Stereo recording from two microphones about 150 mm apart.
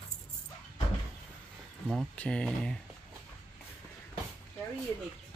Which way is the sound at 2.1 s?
5° left (ahead or behind).